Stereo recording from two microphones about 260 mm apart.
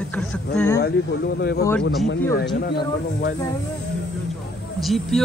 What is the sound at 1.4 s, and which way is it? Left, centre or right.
Speech, left.